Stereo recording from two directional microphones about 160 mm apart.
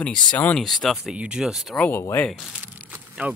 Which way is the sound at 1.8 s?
10° left (ahead or behind).